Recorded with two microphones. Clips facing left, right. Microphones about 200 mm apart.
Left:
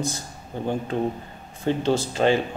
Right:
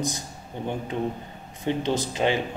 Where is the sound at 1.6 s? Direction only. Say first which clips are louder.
Left 3 dB; 15° right (ahead or behind).